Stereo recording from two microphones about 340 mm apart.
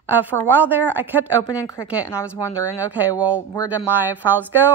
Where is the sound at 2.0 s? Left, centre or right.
Centre.